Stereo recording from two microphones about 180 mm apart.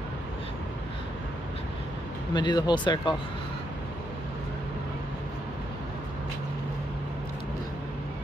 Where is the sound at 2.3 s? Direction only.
25° left (ahead or behind).